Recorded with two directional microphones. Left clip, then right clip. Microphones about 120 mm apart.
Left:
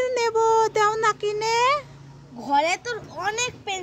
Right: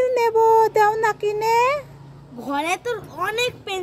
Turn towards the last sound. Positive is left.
turn(degrees=15)  # may be behind; listen again after turning